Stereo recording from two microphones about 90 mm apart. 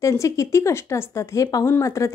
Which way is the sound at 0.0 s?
35° left (ahead or behind).